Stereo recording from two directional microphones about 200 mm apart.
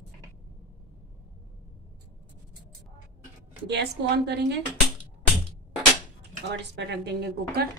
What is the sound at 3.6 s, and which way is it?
Speech, 55° right (ahead or behind).